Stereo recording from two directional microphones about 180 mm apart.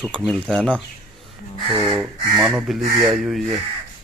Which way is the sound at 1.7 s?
30° right (ahead or behind).